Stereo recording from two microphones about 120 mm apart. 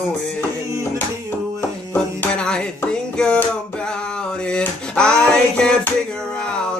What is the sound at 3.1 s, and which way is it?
Music, 5° left (ahead or behind).